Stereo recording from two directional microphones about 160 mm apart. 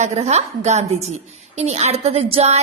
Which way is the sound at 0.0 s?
45° right (ahead or behind).